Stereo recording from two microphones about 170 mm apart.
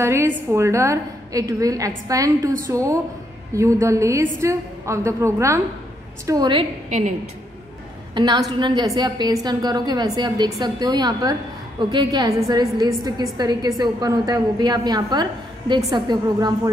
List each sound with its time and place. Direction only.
0.0 s a woman's voice: 15° right (ahead or behind)
6.9 s a woman's voice: 45° right (ahead or behind)
8.1 s a woman's voice: 25° right (ahead or behind)